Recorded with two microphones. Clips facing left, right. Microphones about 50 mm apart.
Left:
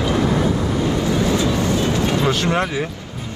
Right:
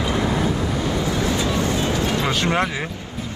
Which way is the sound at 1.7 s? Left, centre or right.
Right.